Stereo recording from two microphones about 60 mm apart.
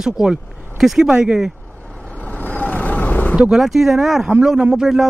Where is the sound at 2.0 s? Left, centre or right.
Left.